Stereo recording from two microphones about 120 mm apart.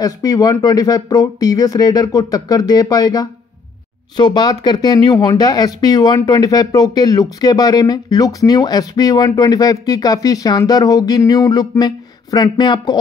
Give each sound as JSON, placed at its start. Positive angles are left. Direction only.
{"t": 0.0, "sound": "speech", "side_deg": 30}